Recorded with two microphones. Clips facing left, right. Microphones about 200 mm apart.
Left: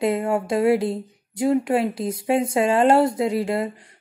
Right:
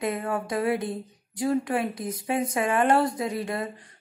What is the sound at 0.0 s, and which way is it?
Speech, 25° left (ahead or behind).